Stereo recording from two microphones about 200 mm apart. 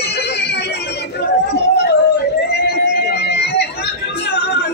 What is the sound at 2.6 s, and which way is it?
Music, 55° left (ahead or behind).